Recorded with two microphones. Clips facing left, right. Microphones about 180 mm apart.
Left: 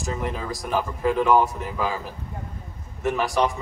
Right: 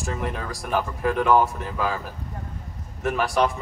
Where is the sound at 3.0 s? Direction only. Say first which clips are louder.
Even; 20° left (ahead or behind).